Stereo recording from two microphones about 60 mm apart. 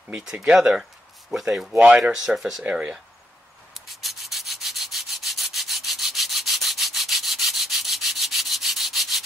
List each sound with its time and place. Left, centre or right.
0.2 s speech: centre
2.6 s speech: right
3.7 s rub: centre